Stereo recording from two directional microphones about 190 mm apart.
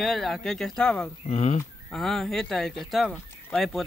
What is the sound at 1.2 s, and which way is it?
Speech, 35° left (ahead or behind).